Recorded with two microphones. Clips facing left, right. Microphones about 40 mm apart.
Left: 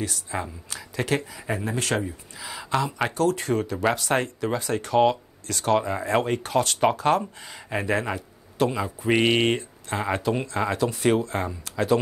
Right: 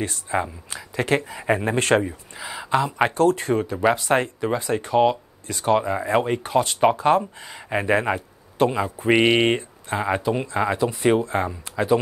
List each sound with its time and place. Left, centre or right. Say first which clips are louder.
0.0 s speech: right 5 dB; right
2.3 s speech: right 4 dB; centre
3.1 s speech: right 4 dB; right
4.9 s speech: right 1 dB; centre
5.5 s speech: right 2 dB; right
8.9 s speech: right 3 dB; right
9.9 s speech: right 2 dB; centre